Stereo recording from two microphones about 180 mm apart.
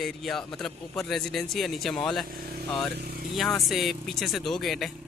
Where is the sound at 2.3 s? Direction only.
55° right (ahead or behind).